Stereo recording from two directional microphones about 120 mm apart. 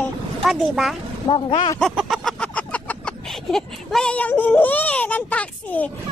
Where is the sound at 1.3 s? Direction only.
45° left (ahead or behind).